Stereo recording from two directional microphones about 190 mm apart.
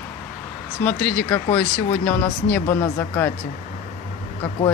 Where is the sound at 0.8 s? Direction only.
5° left (ahead or behind).